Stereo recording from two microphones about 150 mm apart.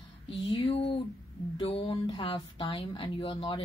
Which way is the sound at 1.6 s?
40° left (ahead or behind).